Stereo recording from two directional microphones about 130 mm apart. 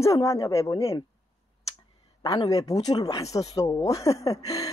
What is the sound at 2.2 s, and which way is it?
A woman's voice, 30° left (ahead or behind).